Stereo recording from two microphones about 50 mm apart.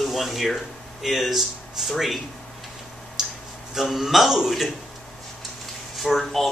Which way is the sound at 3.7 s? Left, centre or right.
Centre.